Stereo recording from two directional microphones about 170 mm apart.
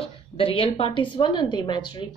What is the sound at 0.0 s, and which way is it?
A woman's voice, 30° left (ahead or behind).